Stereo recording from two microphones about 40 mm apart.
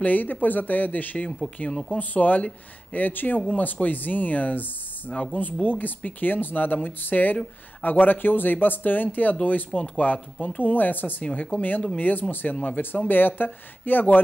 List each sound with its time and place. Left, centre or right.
0.0 s speech: left
10.6 s speech: left
12.5 s speech: left